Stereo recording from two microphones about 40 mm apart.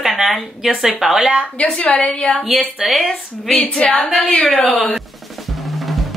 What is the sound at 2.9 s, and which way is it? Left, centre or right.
A woman's voice, centre.